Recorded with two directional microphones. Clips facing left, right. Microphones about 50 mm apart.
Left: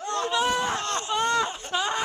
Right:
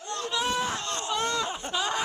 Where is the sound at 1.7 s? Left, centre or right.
Centre.